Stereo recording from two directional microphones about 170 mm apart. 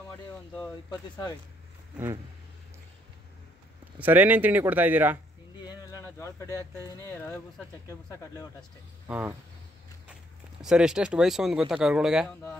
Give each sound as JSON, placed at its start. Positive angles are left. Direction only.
{"t": 4.0, "sound": "a man's voice", "side_deg": -10}
{"t": 6.1, "sound": "speech", "side_deg": 20}
{"t": 9.0, "sound": "speech", "side_deg": -10}
{"t": 10.6, "sound": "speech", "side_deg": -5}